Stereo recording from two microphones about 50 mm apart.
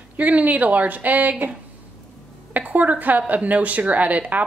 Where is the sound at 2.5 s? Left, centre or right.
Right.